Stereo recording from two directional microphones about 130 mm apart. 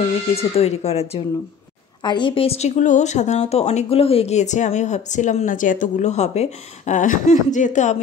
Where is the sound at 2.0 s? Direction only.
35° left (ahead or behind); by 8.0 s 65° left (ahead or behind).